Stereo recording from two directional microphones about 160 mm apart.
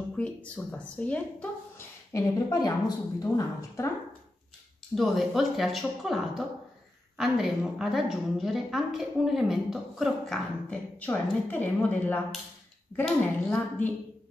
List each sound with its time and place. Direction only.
0.2 s a woman's voice: 5° left (ahead or behind)
2.1 s speech: 25° left (ahead or behind)
4.9 s a woman's voice: centre (ahead or behind)